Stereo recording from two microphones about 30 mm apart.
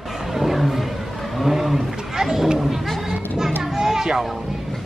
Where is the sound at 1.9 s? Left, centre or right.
Centre.